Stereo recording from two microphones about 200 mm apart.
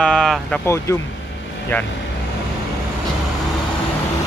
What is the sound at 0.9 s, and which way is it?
Speech, 15° left (ahead or behind).